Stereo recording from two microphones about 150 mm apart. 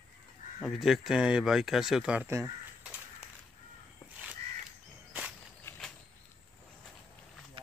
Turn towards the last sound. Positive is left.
turn(degrees=15)  # may be behind; listen again after turning